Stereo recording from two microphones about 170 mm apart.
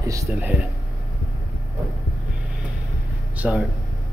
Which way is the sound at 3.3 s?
10° right (ahead or behind).